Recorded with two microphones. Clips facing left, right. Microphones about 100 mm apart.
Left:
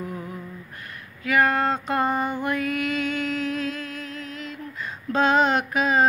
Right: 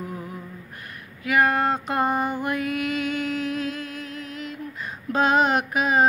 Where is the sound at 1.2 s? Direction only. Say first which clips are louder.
Even; 20° right (ahead or behind).